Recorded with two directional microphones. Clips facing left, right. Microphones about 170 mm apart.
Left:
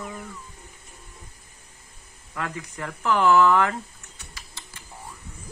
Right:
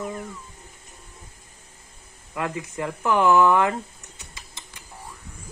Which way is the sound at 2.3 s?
20° right (ahead or behind).